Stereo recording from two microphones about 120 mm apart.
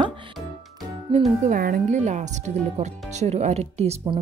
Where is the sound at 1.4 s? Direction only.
85° right; by 3.9 s 60° right (ahead or behind).